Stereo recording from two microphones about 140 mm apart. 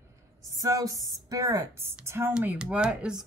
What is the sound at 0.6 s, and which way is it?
Speech, 25° right (ahead or behind).